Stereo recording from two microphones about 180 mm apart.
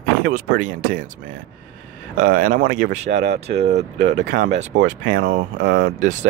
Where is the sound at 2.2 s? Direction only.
45° right (ahead or behind).